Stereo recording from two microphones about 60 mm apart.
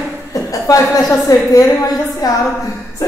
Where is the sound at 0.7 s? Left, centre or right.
Left.